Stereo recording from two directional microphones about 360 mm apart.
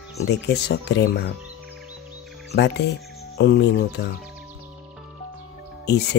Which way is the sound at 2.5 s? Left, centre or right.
Left.